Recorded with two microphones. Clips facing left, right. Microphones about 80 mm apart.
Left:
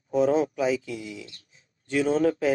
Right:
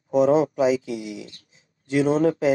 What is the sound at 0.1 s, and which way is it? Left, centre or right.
Speech, right.